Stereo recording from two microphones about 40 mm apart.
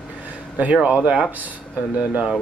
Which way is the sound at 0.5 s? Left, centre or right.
Right.